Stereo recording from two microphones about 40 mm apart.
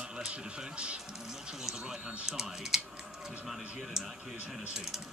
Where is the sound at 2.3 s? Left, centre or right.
Centre.